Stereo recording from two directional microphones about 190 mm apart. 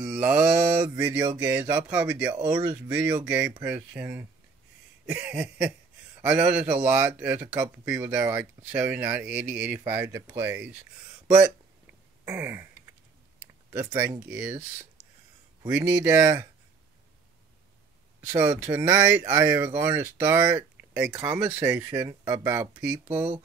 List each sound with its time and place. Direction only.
0.0 s speech: 5° right (ahead or behind)
15.7 s speech: 10° right (ahead or behind)
18.2 s speech: 15° right (ahead or behind)